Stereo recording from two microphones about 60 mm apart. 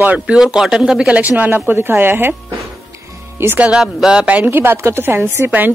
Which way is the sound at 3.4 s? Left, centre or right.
Right.